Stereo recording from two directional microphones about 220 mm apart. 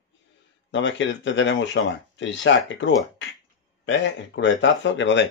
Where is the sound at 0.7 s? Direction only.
55° left (ahead or behind).